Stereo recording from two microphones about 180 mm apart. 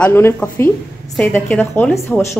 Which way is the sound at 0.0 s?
10° left (ahead or behind).